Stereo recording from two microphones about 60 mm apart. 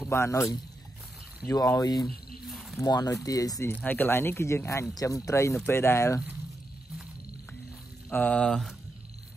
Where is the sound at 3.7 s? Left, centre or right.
Left.